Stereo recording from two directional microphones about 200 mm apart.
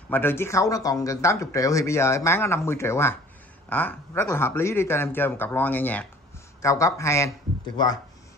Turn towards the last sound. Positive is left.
turn(degrees=20)  # may be behind; listen again after turning